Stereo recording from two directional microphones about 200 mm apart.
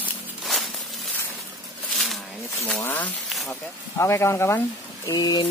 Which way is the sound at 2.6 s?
10° left (ahead or behind).